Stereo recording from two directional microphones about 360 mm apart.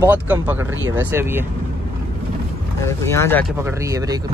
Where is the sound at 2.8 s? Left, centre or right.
Centre.